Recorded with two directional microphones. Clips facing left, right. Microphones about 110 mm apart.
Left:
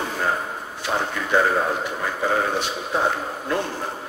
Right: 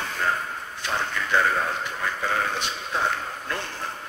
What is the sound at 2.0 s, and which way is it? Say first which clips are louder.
A man's voice: left 3 dB; 20° left (ahead or behind).